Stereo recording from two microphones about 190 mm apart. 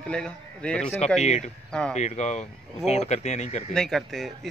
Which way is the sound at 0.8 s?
35° left (ahead or behind).